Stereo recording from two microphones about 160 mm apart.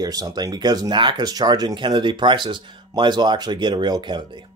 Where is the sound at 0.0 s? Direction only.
25° right (ahead or behind).